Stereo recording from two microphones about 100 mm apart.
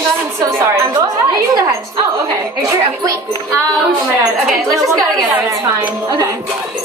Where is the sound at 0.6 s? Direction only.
30° right (ahead or behind).